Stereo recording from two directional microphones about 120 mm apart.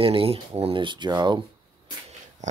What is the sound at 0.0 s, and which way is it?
Speech, 50° right (ahead or behind).